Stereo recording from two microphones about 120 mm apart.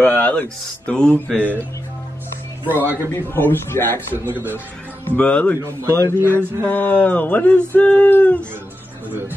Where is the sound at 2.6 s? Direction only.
15° left (ahead or behind).